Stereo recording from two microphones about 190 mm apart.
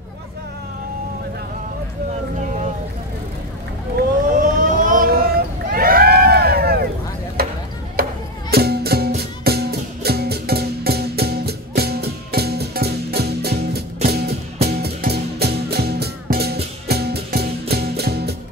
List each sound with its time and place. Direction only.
4.3 s vehicle: 45° right (ahead or behind)
7.4 s chop: 55° right (ahead or behind)
7.9 s music: 55° right (ahead or behind)